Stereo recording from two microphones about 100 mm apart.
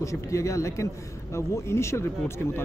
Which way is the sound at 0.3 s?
30° left (ahead or behind).